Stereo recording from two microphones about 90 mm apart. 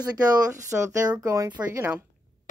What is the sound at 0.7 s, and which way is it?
Speech, 15° right (ahead or behind).